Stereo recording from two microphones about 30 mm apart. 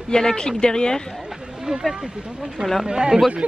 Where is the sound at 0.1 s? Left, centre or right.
Left.